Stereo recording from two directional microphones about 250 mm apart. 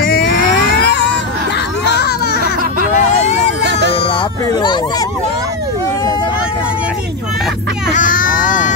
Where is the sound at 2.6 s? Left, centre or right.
Right.